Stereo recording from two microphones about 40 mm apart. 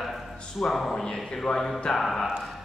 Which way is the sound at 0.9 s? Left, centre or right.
Centre.